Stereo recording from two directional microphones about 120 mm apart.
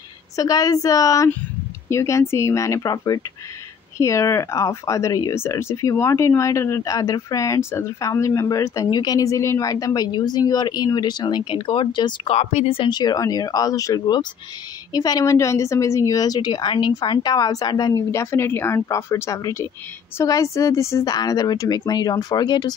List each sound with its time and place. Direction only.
0.4 s speech: 30° left (ahead or behind)
12.3 s a woman's voice: 55° left (ahead or behind); by 17.9 s 35° left (ahead or behind)
18.1 s a woman's voice: 20° left (ahead or behind)